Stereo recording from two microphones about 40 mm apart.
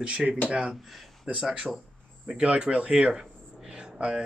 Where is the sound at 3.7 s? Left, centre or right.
Right.